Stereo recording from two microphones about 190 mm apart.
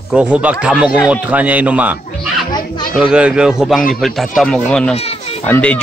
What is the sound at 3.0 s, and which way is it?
A man's voice, 5° right (ahead or behind).